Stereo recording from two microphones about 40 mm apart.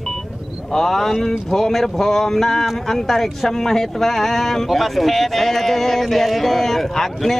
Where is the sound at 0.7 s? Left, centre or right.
Centre.